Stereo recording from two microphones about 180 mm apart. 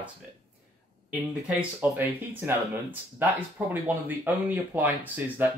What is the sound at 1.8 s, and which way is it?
Speech, 10° right (ahead or behind).